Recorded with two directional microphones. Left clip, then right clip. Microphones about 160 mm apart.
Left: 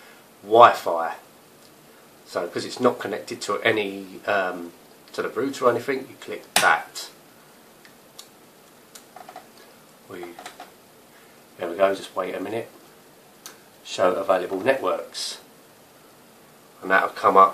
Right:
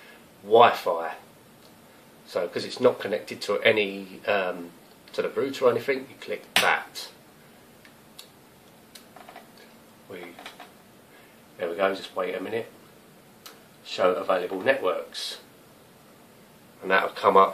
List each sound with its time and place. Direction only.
0.5 s speech: centre (ahead or behind)
2.2 s speech: 5° left (ahead or behind)
11.7 s speech: 20° left (ahead or behind)
16.8 s speech: 5° right (ahead or behind)